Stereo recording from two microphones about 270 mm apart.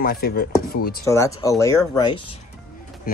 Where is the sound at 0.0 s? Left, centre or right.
Left.